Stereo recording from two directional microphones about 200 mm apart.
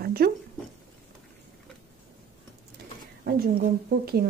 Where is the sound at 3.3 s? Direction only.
50° right (ahead or behind).